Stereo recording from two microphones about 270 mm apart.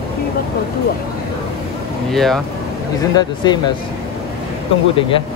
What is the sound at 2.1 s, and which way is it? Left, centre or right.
Speech, centre.